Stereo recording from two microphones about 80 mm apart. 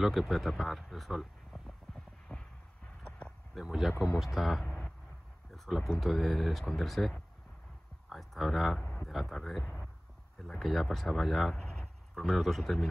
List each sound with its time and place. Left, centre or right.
0.0 s speech: centre
2.3 s a sound: centre
3.5 s speech: centre
3.9 s speech: left
4.2 s speech: centre